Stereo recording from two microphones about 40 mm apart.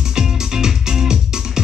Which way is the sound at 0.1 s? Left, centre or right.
Centre.